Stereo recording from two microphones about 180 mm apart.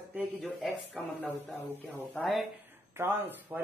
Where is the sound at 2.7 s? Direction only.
15° right (ahead or behind).